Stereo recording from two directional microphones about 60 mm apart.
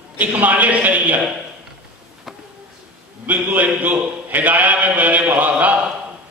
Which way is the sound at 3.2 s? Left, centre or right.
Right.